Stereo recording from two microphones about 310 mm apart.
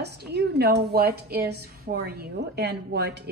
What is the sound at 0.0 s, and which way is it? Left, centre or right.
A woman's voice, right.